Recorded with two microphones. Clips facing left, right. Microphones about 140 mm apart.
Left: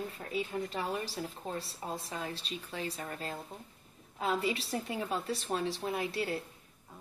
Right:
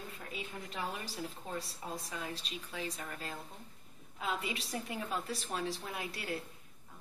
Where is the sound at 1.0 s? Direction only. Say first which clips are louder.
Left 4 dB; 30° left (ahead or behind).